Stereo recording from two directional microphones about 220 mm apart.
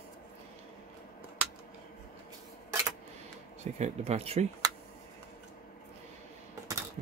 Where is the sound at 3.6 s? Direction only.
30° right (ahead or behind).